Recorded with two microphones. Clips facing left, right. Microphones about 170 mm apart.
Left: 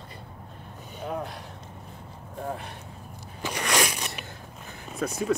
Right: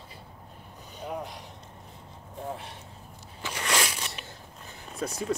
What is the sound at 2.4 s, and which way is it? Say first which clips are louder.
Vehicle: left 3 dB; 55° left (ahead or behind).